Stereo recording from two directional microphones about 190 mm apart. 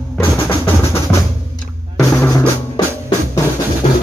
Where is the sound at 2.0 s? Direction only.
15° left (ahead or behind).